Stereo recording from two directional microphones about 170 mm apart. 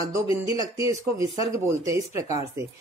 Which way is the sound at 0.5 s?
20° right (ahead or behind).